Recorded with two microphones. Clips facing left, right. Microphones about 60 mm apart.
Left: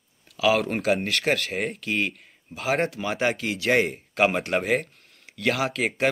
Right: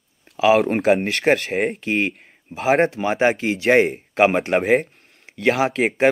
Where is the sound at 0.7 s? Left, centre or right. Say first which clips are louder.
Right 6 dB; right.